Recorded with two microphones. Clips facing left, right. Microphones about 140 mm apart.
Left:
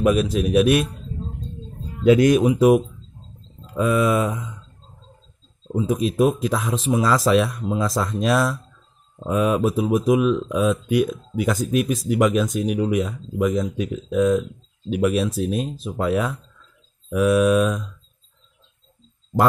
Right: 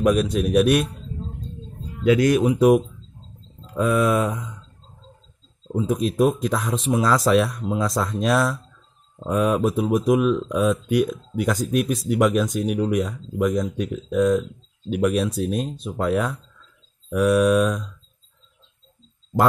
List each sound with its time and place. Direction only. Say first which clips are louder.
0.0 s speech: even; centre (ahead or behind)
2.0 s speech: left 3 dB; 20° left (ahead or behind)
2.4 s speech: left 1 dB; 5° left (ahead or behind)
5.7 s speech: left 1 dB; centre (ahead or behind)